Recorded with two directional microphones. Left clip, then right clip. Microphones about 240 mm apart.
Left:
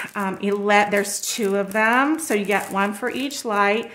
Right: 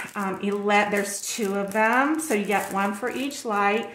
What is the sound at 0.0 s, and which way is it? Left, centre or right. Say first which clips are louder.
Speech: left 3 dB; left.